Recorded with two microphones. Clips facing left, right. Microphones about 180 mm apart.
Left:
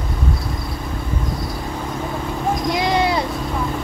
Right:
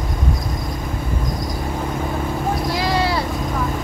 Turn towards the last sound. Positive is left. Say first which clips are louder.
# left 2 dB
turn(degrees=20)  # may be behind; listen again after turning